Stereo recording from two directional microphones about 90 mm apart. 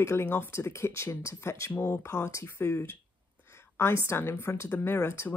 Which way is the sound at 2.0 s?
30° left (ahead or behind).